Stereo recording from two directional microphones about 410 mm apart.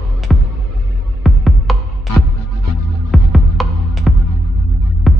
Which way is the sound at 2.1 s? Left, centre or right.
Left.